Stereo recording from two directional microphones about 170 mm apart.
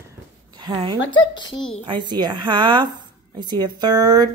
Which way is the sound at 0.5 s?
25° right (ahead or behind).